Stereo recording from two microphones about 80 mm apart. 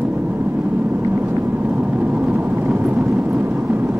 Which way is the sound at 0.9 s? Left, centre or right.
Right.